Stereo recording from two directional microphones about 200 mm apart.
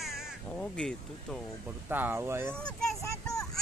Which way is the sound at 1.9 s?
10° right (ahead or behind).